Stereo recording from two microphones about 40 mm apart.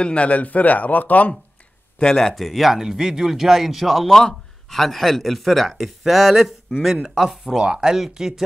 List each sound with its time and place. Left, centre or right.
0.0 s speech: left
2.1 s a man's voice: centre
4.1 s a man's voice: centre